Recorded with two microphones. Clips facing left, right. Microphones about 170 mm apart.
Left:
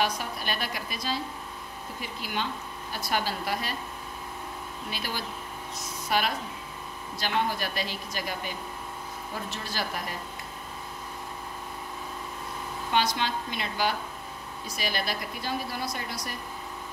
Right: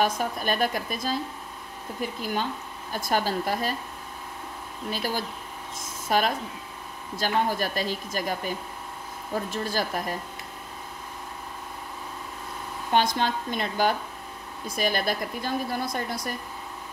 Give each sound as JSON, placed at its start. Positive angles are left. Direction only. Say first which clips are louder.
{"t": 0.0, "sound": "a woman's voice", "louder": "right 4 dB", "side_deg": -50}
{"t": 4.9, "sound": "a woman's voice", "louder": "right 6 dB", "side_deg": -45}
{"t": 9.5, "sound": "a woman's voice", "louder": "right 5 dB", "side_deg": -50}
{"t": 12.9, "sound": "a woman's voice", "louder": "right 4 dB", "side_deg": -50}